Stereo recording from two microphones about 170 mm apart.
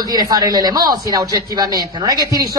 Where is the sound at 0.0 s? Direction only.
25° right (ahead or behind).